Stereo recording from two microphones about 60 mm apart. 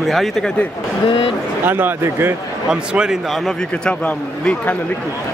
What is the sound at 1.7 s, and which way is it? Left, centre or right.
Speech, right.